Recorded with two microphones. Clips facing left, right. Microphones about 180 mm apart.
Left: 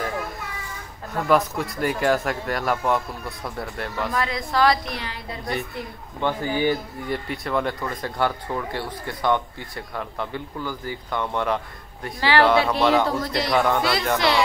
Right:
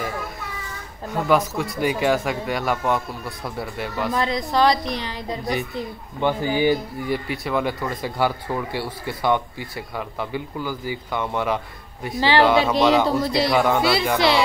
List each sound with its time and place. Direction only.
1.1 s speech: centre (ahead or behind)
4.1 s a woman's voice: 20° right (ahead or behind)
7.1 s speech: 5° right (ahead or behind)
12.2 s a woman's voice: 20° right (ahead or behind)